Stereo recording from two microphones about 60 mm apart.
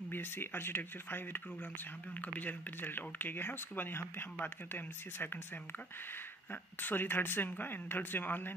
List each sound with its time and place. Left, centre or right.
0.1 s speech: left
6.5 s speech: left